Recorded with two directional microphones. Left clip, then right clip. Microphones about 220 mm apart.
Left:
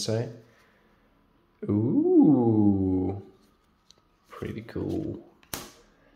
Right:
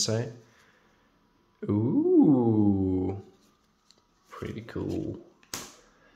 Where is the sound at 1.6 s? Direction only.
5° right (ahead or behind).